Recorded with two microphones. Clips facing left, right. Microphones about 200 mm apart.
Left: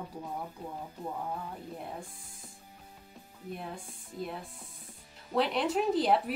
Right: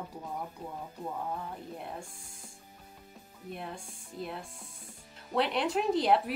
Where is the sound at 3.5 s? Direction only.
Centre (ahead or behind).